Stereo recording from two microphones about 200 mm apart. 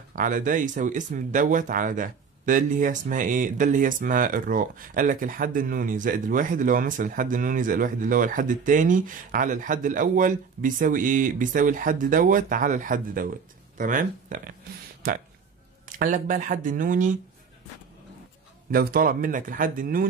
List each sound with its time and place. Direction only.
0.1 s speech: 40° right (ahead or behind)
16.0 s speech: 40° right (ahead or behind)
18.7 s speech: 50° right (ahead or behind)